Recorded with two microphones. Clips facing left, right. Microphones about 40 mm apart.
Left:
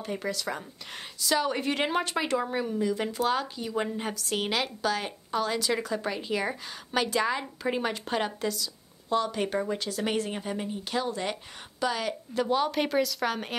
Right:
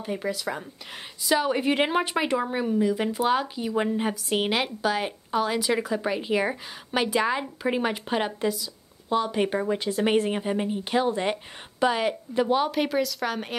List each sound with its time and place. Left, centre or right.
0.0 s a woman's voice: centre
12.7 s speech: centre